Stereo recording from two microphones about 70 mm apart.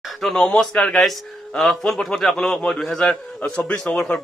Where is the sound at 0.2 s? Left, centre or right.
Centre.